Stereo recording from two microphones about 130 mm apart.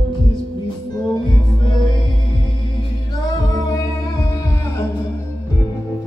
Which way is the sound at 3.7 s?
25° left (ahead or behind).